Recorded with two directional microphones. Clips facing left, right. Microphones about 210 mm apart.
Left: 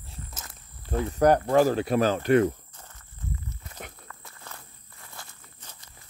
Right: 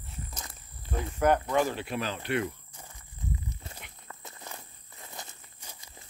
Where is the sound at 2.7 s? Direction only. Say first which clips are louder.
Right 1 dB; 10° right (ahead or behind).